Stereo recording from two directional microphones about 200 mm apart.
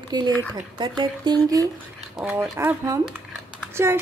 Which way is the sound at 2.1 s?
5° right (ahead or behind).